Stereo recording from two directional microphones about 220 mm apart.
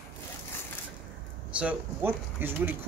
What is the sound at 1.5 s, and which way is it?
Speech, 5° right (ahead or behind).